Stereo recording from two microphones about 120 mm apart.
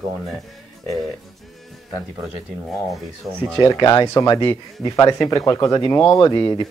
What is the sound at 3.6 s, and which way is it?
Speech, 30° left (ahead or behind).